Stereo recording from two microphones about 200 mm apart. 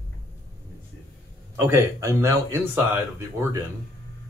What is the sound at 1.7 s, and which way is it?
Speech, 15° right (ahead or behind).